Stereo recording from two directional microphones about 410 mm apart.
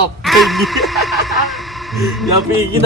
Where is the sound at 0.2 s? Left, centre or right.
Centre.